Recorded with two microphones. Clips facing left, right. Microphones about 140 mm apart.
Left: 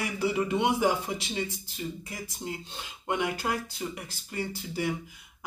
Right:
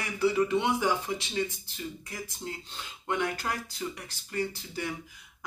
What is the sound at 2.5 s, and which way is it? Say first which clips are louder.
Speech: left 2 dB; 15° left (ahead or behind).